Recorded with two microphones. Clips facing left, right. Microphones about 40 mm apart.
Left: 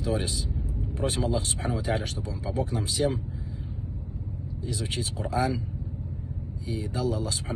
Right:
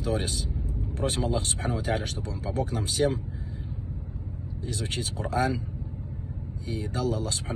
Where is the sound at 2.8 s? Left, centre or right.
Right.